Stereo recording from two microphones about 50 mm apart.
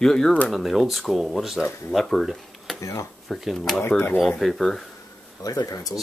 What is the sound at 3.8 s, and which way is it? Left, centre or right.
Speech, left.